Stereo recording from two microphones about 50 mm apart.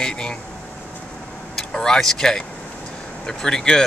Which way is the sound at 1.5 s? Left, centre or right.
Centre.